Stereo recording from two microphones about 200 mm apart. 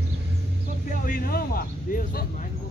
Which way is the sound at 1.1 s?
50° left (ahead or behind).